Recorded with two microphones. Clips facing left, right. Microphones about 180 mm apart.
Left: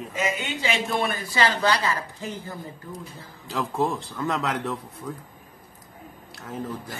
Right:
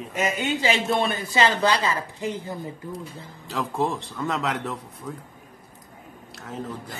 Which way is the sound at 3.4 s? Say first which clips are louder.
Even; centre (ahead or behind).